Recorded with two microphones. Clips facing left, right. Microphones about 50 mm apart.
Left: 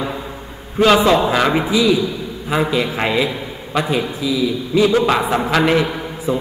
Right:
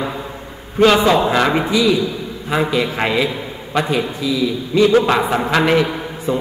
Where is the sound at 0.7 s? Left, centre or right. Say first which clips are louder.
Even; centre.